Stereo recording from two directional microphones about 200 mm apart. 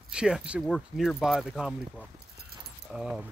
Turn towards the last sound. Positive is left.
turn(degrees=-5)  # may be behind; listen again after turning